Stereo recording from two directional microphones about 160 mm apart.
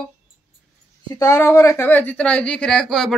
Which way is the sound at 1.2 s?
20° left (ahead or behind).